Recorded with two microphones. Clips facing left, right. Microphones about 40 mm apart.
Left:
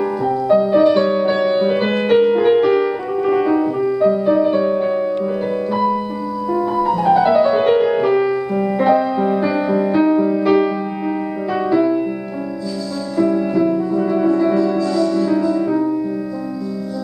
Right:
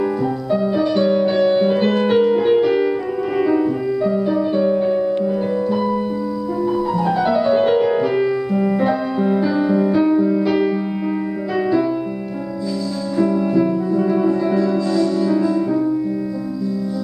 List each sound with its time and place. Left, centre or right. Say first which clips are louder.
0.5 s music: left 7 dB; centre
3.3 s music: right 2 dB; centre
4.3 s music: left 3 dB; centre
7.2 s music: even; centre
13.2 s music: left 1 dB; centre